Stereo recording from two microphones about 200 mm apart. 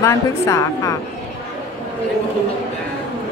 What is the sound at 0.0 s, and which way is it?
Speech, 15° left (ahead or behind).